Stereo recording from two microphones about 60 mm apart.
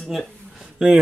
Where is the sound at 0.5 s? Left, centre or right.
Centre.